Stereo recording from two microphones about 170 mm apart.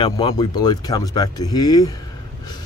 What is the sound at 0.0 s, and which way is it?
Speech, 25° left (ahead or behind).